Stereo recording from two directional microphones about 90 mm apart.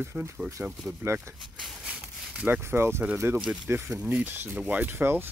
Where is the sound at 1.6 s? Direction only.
10° right (ahead or behind).